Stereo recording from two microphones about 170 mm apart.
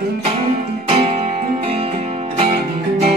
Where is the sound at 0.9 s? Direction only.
35° right (ahead or behind).